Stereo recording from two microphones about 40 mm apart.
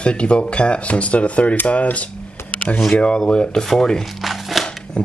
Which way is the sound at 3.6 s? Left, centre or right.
Centre.